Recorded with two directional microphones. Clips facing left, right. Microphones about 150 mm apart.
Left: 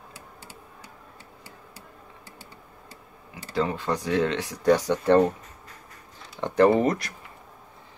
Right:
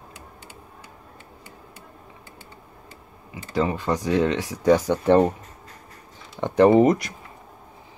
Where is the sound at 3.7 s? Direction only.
15° right (ahead or behind).